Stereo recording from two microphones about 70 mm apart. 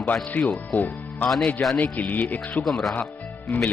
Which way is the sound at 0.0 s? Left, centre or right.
Left.